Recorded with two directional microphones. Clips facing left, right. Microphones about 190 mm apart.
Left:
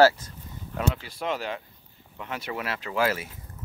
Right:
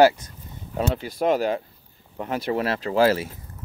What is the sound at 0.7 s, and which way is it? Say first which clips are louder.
Speech: right 4 dB; 40° right (ahead or behind).